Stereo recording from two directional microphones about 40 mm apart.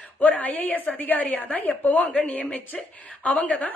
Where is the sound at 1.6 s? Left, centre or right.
Left.